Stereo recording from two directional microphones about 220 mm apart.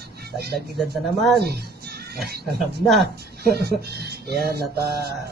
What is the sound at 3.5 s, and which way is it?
Speech, 45° right (ahead or behind).